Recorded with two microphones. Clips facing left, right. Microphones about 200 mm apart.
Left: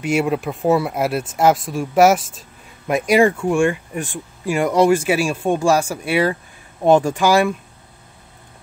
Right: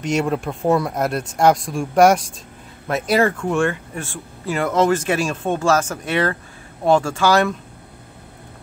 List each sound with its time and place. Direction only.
0.0 s speech: 5° left (ahead or behind)